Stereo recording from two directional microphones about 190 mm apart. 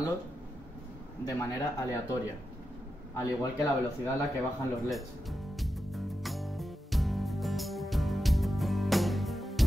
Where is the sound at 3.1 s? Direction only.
15° left (ahead or behind).